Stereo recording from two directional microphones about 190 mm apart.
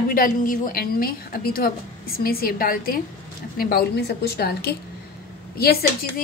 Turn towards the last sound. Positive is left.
turn(degrees=55)  # may be behind; listen again after turning